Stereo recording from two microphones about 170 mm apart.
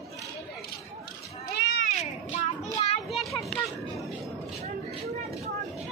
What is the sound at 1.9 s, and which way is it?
Cat, 40° left (ahead or behind).